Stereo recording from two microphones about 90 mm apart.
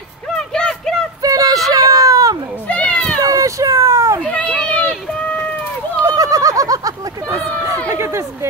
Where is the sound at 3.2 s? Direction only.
40° right (ahead or behind).